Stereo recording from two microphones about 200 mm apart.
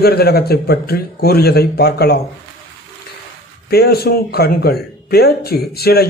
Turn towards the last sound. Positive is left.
turn(degrees=50)  # may be behind; listen again after turning